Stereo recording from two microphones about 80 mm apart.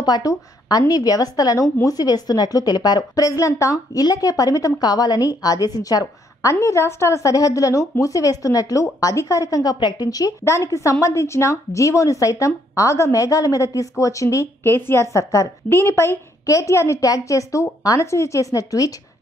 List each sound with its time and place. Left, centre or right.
0.0 s a woman's voice: left
6.5 s a woman's voice: left
10.4 s a woman's voice: left